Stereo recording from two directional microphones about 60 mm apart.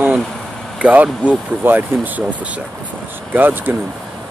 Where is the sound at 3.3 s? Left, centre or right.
Right.